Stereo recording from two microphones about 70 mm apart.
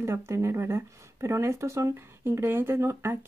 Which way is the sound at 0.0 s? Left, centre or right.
Right.